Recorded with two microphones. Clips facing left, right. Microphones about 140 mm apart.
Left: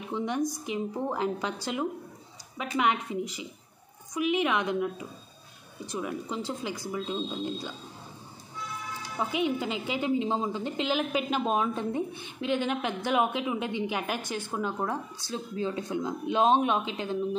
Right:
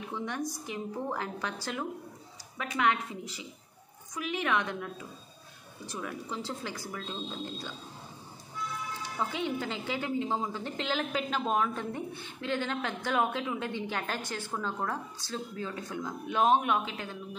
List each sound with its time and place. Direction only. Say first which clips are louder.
0.1 s a woman's voice: left 7 dB; 15° left (ahead or behind)
9.2 s a woman's voice: left 4 dB; 15° left (ahead or behind)